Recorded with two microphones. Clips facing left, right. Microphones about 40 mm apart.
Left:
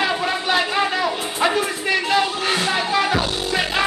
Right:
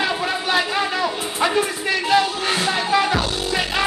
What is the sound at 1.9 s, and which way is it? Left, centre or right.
Music, centre.